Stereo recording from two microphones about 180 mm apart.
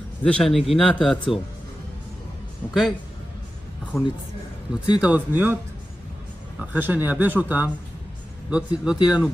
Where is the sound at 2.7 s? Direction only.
Centre (ahead or behind).